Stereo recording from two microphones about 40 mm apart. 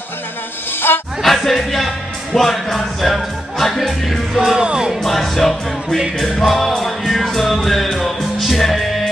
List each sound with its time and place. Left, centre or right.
0.7 s music: left
1.2 s music: centre
2.3 s speech: centre
4.6 s music: centre
5.0 s music: centre